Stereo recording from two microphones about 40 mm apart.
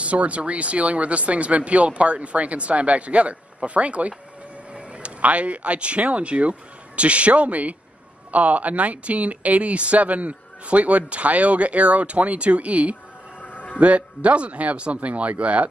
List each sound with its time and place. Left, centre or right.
0.0 s speech: right
13.4 s a sound: left
13.7 s speech: right